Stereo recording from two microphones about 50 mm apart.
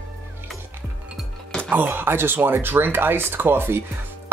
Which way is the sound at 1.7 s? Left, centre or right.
Right.